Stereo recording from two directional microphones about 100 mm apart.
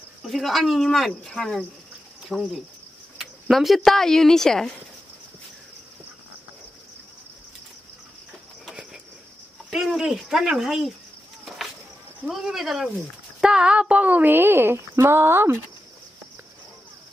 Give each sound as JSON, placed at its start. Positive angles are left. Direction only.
{"t": 0.2, "sound": "speech", "side_deg": 0}
{"t": 9.7, "sound": "speech", "side_deg": -5}
{"t": 12.3, "sound": "speech", "side_deg": -5}